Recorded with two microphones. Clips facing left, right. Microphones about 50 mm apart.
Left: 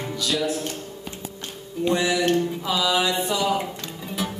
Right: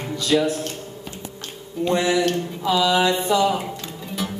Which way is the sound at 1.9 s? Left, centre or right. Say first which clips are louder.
Right 2 dB; right.